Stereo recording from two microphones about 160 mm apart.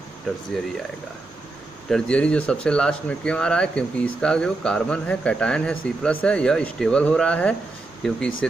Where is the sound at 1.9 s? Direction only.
5° left (ahead or behind).